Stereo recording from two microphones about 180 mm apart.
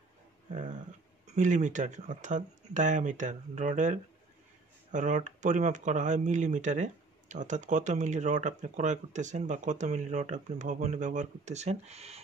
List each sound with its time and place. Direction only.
1.2 s speech: 45° right (ahead or behind)